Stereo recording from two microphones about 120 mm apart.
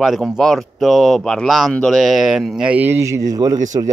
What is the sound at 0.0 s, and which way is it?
A man's voice, centre (ahead or behind).